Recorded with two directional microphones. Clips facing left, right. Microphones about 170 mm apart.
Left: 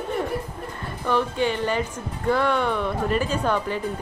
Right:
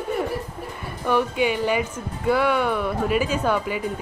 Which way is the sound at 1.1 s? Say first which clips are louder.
Right 2 dB; 10° right (ahead or behind).